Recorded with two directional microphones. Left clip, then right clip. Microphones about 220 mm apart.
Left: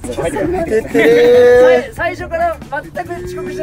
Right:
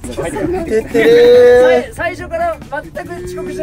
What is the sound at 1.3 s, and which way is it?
Speech, 5° right (ahead or behind).